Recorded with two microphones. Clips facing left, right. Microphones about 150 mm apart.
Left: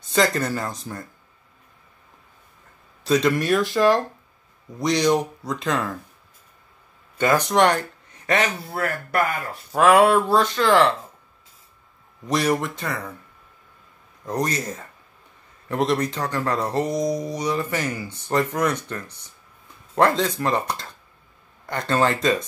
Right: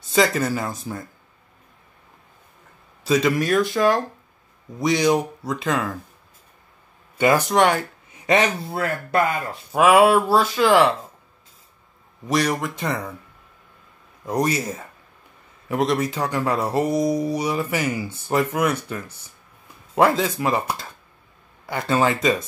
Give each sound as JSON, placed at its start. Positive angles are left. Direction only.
{"t": 0.0, "sound": "speech", "side_deg": -5}
{"t": 3.0, "sound": "speech", "side_deg": 0}
{"t": 7.2, "sound": "speech", "side_deg": -10}
{"t": 8.3, "sound": "speech", "side_deg": -20}
{"t": 9.7, "sound": "speech", "side_deg": -10}
{"t": 12.3, "sound": "speech", "side_deg": 0}
{"t": 12.7, "sound": "speech", "side_deg": -15}
{"t": 14.2, "sound": "speech", "side_deg": -10}